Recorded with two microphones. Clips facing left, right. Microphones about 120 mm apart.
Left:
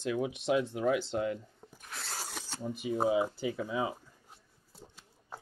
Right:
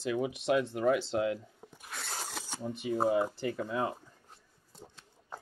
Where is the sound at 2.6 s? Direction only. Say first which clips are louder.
Even; centre (ahead or behind).